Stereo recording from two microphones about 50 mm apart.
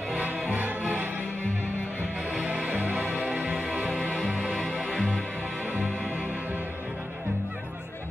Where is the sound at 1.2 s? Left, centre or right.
Left.